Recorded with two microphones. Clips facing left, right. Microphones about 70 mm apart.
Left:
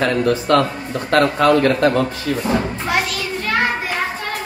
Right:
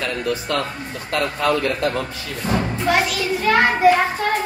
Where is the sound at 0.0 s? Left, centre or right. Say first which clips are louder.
Left 6 dB; left.